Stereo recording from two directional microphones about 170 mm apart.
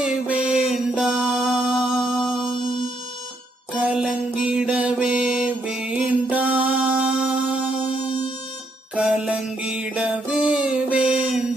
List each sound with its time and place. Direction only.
0.0 s music: 5° right (ahead or behind)
3.7 s music: 5° right (ahead or behind)
8.9 s music: 5° right (ahead or behind)